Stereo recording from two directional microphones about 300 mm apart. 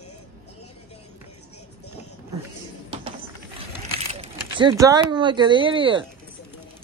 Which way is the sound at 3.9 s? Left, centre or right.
Centre.